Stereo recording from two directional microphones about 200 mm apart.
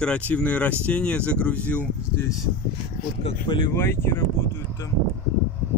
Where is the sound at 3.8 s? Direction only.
10° left (ahead or behind).